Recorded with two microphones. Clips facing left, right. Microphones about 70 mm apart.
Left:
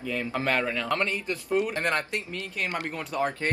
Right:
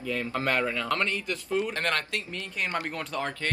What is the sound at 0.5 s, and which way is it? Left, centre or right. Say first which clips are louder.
Speech: even; centre.